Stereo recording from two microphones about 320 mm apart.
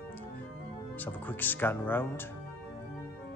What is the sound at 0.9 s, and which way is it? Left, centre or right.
Speech, centre.